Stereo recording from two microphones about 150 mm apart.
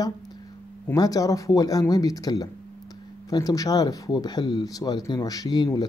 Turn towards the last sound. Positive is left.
turn(degrees=25)  # may be behind; listen again after turning